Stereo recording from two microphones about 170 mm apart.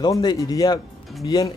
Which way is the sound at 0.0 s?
25° left (ahead or behind).